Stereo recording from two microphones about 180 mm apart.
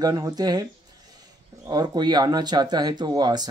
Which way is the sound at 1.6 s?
25° right (ahead or behind).